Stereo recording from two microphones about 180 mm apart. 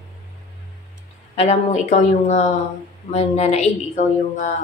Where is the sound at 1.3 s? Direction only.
40° left (ahead or behind).